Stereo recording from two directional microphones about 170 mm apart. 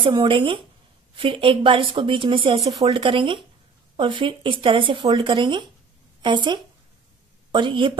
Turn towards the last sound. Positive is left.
turn(degrees=-30)  # may be behind; listen again after turning